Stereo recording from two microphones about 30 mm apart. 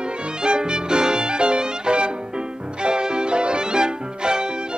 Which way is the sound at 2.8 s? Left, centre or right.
Right.